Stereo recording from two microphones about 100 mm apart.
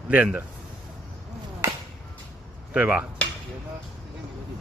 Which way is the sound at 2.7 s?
15° right (ahead or behind).